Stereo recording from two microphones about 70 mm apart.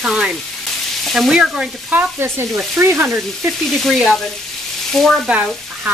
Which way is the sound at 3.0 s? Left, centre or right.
Right.